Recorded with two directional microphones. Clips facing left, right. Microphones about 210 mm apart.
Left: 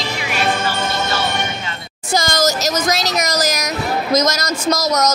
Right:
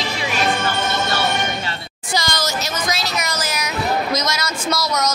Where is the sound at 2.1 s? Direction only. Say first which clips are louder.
Left 6 dB; 45° left (ahead or behind).